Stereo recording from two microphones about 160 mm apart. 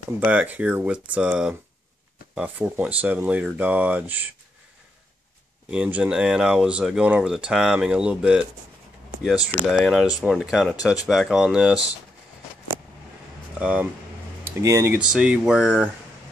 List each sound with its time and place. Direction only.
0.2 s speech: 10° right (ahead or behind)
5.7 s speech: 10° right (ahead or behind)
13.6 s speech: 10° right (ahead or behind)
15.0 s speech: 5° right (ahead or behind)